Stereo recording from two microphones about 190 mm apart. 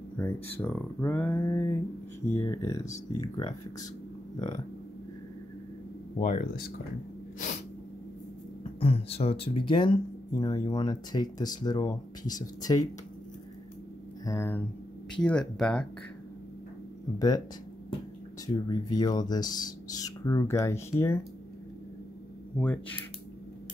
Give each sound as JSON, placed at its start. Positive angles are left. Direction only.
{"t": 0.2, "sound": "speech", "side_deg": 10}
{"t": 6.1, "sound": "speech", "side_deg": 40}
{"t": 7.3, "sound": "sneeze", "side_deg": 40}
{"t": 8.7, "sound": "speech", "side_deg": 30}
{"t": 14.2, "sound": "speech", "side_deg": 15}
{"t": 18.5, "sound": "speech", "side_deg": 20}
{"t": 22.6, "sound": "speech", "side_deg": 5}